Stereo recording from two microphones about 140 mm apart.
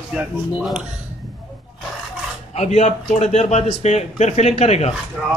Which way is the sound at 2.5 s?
50° left (ahead or behind).